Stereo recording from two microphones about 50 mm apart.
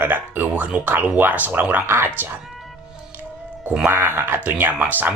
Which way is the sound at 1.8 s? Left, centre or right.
Right.